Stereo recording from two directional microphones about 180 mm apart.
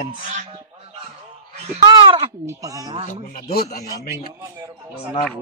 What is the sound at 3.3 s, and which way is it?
Speech, 60° left (ahead or behind).